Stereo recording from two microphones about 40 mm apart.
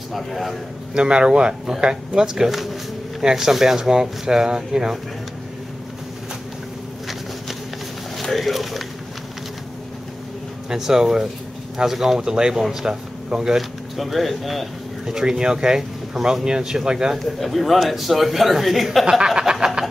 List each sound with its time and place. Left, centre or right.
0.1 s a man's voice: centre
0.9 s speech: right
2.5 s speech: centre
8.2 s speech: centre
10.7 s speech: centre
13.6 s speech: centre
15.1 s speech: centre
17.2 s a man's voice: centre
19.0 s a sound: centre